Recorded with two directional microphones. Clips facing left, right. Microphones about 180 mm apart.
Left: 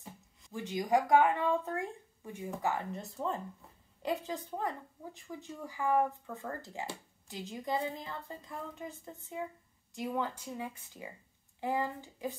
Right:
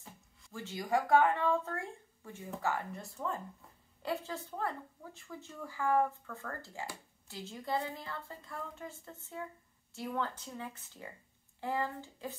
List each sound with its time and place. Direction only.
0.0 s a woman's voice: 20° left (ahead or behind)